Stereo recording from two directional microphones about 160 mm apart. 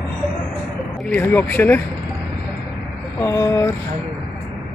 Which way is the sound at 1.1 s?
10° left (ahead or behind).